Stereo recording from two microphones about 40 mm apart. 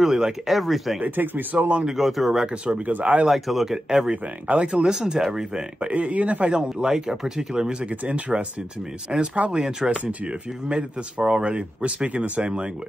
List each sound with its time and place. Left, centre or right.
0.0 s speech: centre
1.0 s speech: right
2.0 s speech: centre
2.4 s speech: right
2.9 s speech: right
3.3 s speech: centre
4.1 s speech: right
4.8 s speech: right
5.9 s speech: right
6.5 s speech: right
7.8 s speech: right